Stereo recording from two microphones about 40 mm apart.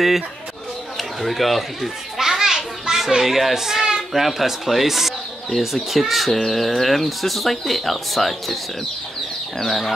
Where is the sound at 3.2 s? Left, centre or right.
Centre.